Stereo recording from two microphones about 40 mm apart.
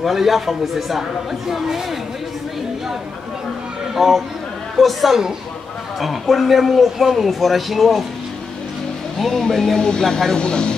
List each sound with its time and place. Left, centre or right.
0.0 s speech: centre
3.9 s speech: centre
9.2 s speech: centre